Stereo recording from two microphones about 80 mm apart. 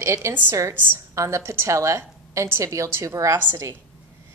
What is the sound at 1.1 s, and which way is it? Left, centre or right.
A woman's voice, right.